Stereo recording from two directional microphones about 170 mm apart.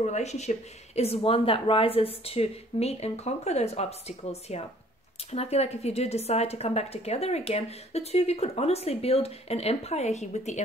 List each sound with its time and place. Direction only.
0.0 s a woman's voice: 40° left (ahead or behind)